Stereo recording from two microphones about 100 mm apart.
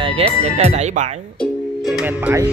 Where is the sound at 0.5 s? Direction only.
90° right.